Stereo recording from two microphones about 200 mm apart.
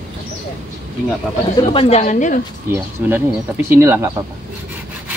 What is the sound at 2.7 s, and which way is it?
Speech, 10° right (ahead or behind).